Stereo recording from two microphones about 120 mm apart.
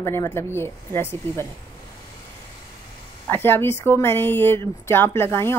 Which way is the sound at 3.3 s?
15° left (ahead or behind).